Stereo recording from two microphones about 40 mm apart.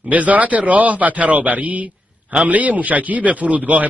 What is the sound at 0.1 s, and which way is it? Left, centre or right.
Speech, right.